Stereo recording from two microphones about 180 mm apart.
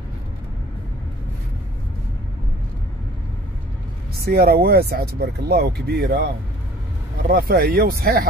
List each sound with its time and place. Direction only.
4.2 s speech: 60° right (ahead or behind)